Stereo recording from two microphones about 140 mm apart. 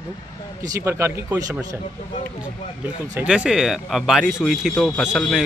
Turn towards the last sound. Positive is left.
turn(degrees=0)  # may be behind; listen again after turning